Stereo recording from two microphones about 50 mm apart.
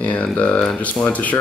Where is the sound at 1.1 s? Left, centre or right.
Left.